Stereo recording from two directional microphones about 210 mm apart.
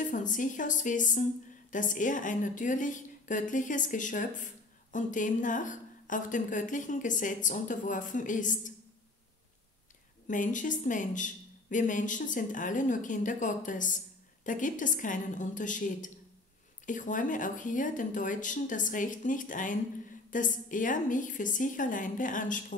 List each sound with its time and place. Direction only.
0.0 s speech: 40° left (ahead or behind)
10.2 s speech: 35° left (ahead or behind)